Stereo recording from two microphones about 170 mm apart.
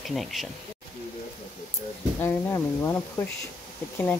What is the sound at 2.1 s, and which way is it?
Speech, 15° left (ahead or behind).